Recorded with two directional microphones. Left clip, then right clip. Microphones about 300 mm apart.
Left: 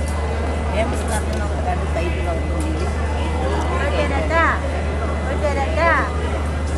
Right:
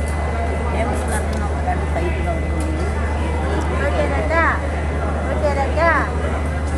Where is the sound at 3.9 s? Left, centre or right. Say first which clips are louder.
Even; centre.